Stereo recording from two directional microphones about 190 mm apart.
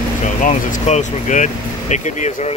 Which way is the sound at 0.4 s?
40° left (ahead or behind).